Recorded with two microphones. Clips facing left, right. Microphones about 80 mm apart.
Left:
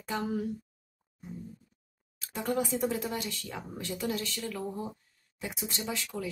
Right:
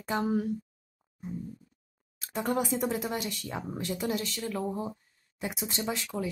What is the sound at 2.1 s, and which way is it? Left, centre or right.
Speech, right.